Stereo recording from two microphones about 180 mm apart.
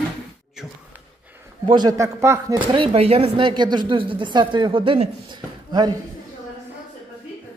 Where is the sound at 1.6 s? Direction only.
25° right (ahead or behind).